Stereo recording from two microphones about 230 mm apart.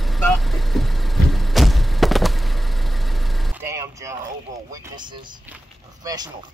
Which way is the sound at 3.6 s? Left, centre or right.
Centre.